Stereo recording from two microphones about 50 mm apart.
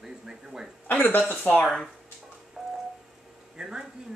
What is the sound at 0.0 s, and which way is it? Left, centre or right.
Speech, centre.